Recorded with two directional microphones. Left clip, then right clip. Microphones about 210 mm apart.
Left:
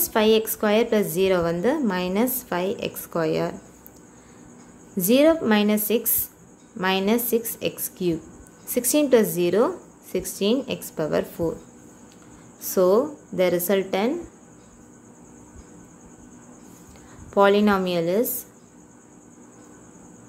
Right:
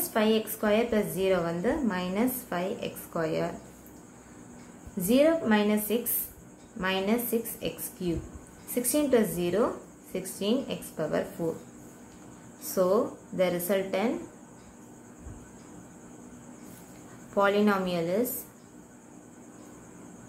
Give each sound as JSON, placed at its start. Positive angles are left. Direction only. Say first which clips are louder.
{"t": 0.1, "sound": "a woman's voice", "louder": "left 7 dB", "side_deg": 45}
{"t": 4.9, "sound": "a woman's voice", "louder": "left 6 dB", "side_deg": 45}
{"t": 12.7, "sound": "a woman's voice", "louder": "left 6 dB", "side_deg": 40}
{"t": 17.3, "sound": "a woman's voice", "louder": "left 7 dB", "side_deg": 40}